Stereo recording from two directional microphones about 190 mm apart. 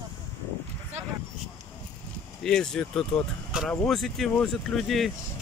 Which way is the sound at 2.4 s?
5° left (ahead or behind).